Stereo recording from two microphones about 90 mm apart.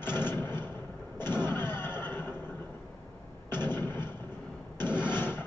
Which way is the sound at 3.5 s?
25° left (ahead or behind).